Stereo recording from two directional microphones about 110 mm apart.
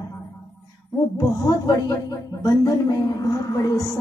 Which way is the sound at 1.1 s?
35° left (ahead or behind).